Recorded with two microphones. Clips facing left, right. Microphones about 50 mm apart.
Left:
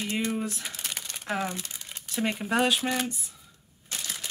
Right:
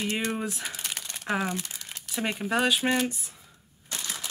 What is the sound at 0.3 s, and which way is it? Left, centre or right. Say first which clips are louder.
Speech: even; right.